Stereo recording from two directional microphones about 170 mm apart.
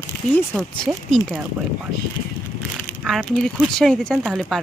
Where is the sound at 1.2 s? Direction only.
25° left (ahead or behind).